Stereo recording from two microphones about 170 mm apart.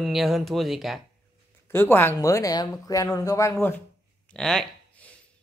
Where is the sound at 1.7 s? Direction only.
15° left (ahead or behind).